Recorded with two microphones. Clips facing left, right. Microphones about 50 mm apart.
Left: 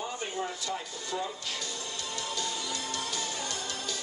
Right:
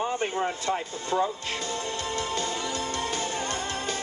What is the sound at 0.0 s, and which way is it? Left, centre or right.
Music, right.